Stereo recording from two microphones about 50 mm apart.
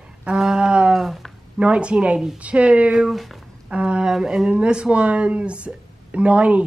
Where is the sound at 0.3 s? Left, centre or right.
Centre.